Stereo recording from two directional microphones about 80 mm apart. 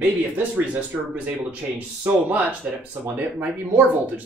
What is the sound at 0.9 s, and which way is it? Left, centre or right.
Speech, centre.